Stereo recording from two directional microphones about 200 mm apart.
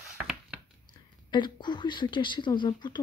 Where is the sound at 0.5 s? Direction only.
5° right (ahead or behind).